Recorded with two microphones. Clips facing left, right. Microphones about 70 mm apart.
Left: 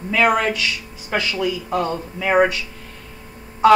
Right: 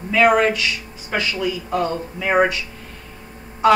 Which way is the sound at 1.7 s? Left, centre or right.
Left.